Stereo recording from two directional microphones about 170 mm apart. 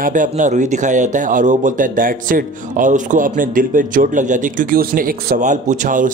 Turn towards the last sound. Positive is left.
turn(degrees=-50)  # may be behind; listen again after turning